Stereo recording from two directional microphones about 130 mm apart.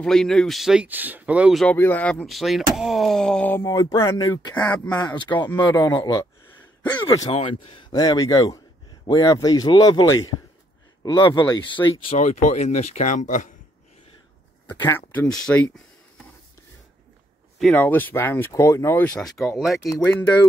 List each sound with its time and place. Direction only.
0.0 s speech: 5° left (ahead or behind)
1.5 s speech: centre (ahead or behind)
1.8 s speech: 15° left (ahead or behind)
2.2 s speech: centre (ahead or behind)
3.6 s a man's voice: 30° left (ahead or behind)
7.9 s a man's voice: 30° left (ahead or behind)
12.2 s speech: 65° left (ahead or behind)
14.8 s speech: 15° left (ahead or behind)
15.2 s speech: 5° left (ahead or behind)
17.7 s speech: 15° left (ahead or behind)
20.0 s speech: 10° left (ahead or behind)